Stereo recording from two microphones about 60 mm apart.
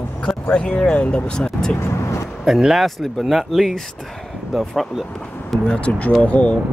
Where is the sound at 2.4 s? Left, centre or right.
Centre.